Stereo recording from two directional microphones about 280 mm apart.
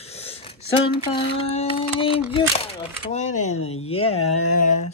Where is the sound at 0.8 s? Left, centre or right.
Centre.